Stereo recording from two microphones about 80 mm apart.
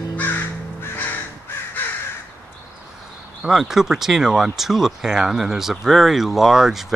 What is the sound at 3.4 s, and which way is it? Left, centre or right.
Speech, centre.